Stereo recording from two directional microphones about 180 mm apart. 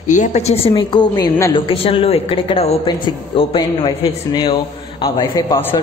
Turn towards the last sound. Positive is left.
turn(degrees=15)  # may be behind; listen again after turning